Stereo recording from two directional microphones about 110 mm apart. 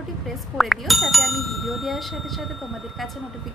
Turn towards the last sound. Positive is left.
turn(degrees=0)  # may be behind; listen again after turning